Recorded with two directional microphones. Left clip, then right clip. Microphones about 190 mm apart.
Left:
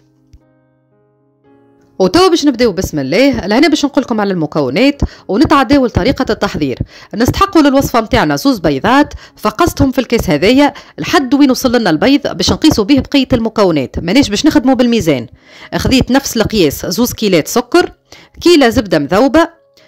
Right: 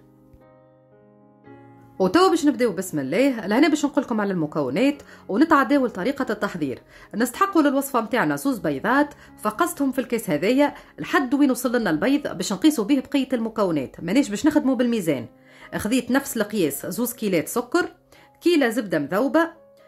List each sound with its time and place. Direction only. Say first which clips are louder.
2.0 s a woman's voice: left 9 dB; 40° left (ahead or behind)